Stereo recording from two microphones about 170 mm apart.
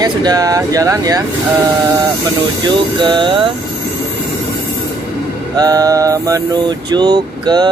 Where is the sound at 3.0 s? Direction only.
30° right (ahead or behind).